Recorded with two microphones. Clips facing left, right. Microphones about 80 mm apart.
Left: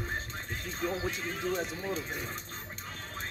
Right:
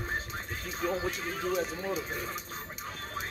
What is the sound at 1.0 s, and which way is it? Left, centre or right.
Speech, centre.